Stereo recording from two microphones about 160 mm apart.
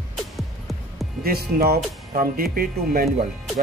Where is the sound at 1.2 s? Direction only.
70° right (ahead or behind).